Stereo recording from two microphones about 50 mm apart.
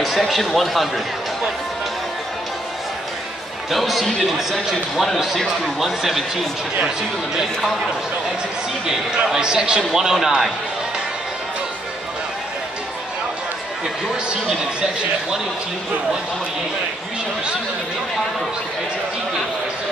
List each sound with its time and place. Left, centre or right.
0.0 s a man's voice: centre
3.7 s a man's voice: centre
8.8 s a man's voice: centre